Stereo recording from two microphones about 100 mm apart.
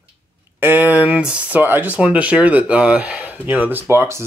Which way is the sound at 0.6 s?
20° right (ahead or behind).